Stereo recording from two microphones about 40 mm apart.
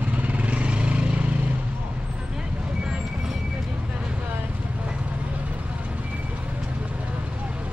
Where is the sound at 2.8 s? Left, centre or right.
Centre.